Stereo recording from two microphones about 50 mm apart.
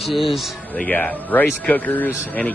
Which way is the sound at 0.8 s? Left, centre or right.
Left.